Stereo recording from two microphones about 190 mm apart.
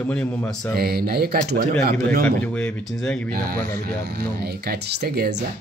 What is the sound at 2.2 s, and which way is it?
Speech, 5° left (ahead or behind).